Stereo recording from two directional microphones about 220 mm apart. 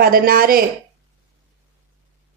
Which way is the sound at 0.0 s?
40° right (ahead or behind).